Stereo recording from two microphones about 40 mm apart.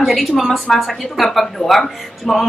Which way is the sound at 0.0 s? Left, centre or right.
Centre.